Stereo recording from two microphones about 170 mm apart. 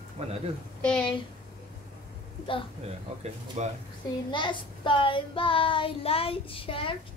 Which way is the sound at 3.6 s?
40° right (ahead or behind).